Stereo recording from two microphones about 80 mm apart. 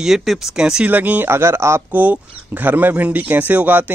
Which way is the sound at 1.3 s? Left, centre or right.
Right.